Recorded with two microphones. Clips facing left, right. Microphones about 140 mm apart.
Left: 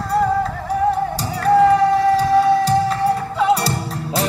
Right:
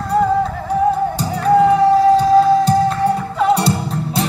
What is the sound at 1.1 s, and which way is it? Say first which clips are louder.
Music: right 1 dB; centre (ahead or behind).